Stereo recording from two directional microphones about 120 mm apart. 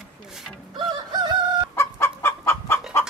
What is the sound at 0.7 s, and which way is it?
Chicken, 40° right (ahead or behind).